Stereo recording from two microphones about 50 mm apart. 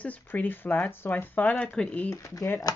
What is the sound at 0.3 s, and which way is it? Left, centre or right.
Speech, left.